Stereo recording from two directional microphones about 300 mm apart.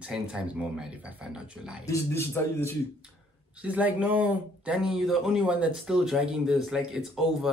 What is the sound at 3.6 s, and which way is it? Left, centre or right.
Speech, centre.